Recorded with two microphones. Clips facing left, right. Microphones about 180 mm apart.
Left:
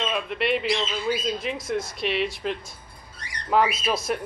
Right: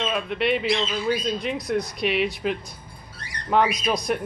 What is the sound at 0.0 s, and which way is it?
Speech, centre (ahead or behind).